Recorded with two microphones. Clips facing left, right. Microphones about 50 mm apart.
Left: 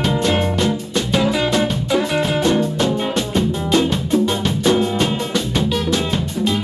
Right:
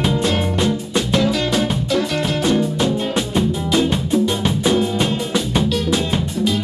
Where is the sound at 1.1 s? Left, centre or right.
Centre.